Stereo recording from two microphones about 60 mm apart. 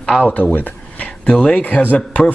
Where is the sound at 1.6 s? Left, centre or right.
Left.